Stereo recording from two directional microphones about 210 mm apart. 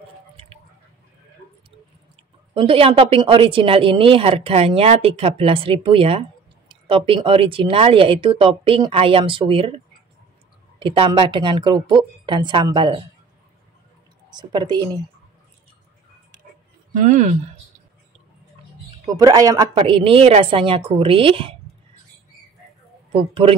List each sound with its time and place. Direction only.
2.5 s a woman's voice: 25° right (ahead or behind)
10.8 s a woman's voice: 25° right (ahead or behind)
14.3 s a woman's voice: 20° right (ahead or behind)
16.9 s speech: 35° right (ahead or behind)
19.0 s a woman's voice: 15° right (ahead or behind)
23.1 s a woman's voice: 25° right (ahead or behind)